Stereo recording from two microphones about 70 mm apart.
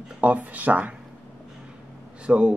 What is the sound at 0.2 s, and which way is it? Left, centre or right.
Speech, right.